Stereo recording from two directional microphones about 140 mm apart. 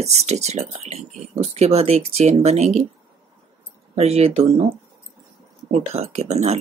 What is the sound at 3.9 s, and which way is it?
Speech, 50° right (ahead or behind).